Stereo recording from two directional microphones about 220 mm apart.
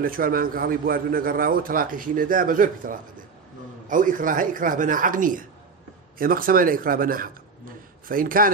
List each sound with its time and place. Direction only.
0.0 s a man's voice: 40° right (ahead or behind)